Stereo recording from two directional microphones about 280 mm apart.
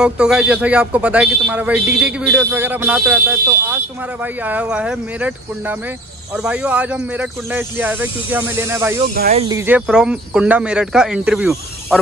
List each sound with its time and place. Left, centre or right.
0.0 s speech: centre
9.1 s speech: right
9.4 s speech: centre